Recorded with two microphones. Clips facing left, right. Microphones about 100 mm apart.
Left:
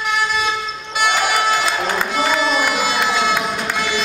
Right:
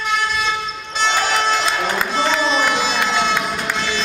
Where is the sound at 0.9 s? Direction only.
10° left (ahead or behind).